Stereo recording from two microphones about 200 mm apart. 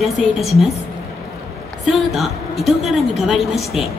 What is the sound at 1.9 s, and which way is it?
A woman's voice, centre (ahead or behind).